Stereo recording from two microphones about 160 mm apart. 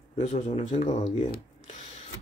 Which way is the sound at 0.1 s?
40° left (ahead or behind).